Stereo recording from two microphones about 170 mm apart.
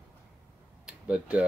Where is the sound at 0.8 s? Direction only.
5° right (ahead or behind).